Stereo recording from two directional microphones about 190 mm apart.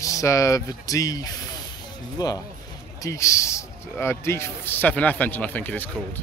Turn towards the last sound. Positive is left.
turn(degrees=10)  # may be behind; listen again after turning